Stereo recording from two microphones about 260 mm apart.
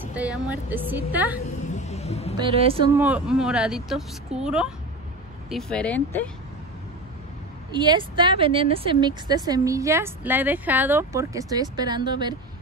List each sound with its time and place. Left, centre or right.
0.0 s speech: centre
1.9 s a sound: left
2.3 s a woman's voice: right
3.0 s speech: centre
7.7 s speech: centre